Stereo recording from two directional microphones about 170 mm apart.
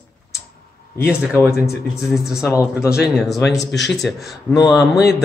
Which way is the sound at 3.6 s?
90° left.